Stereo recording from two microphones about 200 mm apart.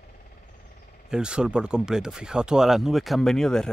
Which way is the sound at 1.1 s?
5° right (ahead or behind).